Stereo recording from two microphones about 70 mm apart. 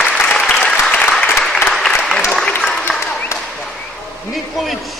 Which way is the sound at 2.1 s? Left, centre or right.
Centre.